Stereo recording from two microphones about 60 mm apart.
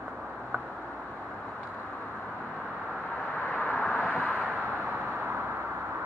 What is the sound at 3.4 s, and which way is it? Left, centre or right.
Vehicle, left.